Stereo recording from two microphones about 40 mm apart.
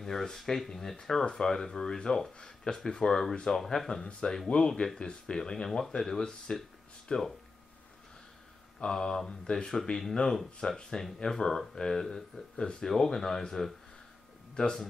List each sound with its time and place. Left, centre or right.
0.0 s speech: centre
4.0 s speech: centre
6.5 s speech: left
8.7 s speech: centre